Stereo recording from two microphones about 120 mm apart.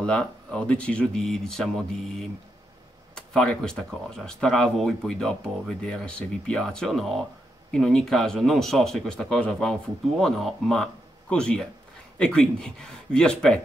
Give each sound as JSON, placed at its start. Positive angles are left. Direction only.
{"t": 0.0, "sound": "speech", "side_deg": 5}